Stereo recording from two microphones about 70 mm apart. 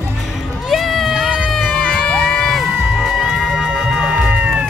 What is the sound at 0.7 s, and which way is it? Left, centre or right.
Run, centre.